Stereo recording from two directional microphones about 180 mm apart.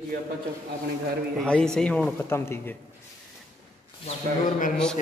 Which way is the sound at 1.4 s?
5° left (ahead or behind).